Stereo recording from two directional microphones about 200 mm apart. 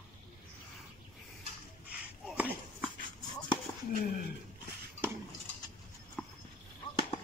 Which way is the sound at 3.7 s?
20° left (ahead or behind).